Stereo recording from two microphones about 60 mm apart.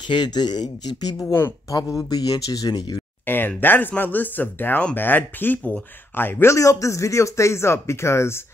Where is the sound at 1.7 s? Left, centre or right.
Left.